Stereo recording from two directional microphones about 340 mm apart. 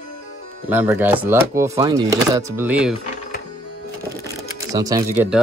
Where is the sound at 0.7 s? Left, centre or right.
Centre.